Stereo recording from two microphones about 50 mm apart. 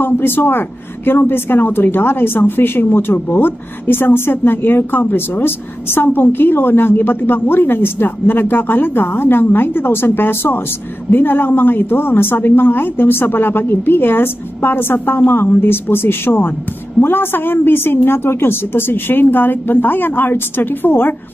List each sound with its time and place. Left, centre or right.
0.0 s a woman's voice: left